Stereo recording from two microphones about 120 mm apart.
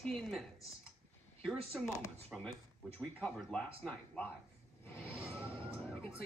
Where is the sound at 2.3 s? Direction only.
10° right (ahead or behind).